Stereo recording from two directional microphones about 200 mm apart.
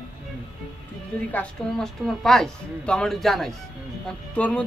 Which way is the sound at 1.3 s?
5° left (ahead or behind).